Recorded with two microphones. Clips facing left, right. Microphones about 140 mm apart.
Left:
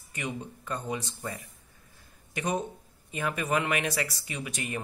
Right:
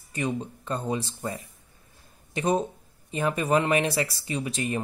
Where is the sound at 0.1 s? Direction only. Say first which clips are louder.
Right 7 dB; 30° right (ahead or behind).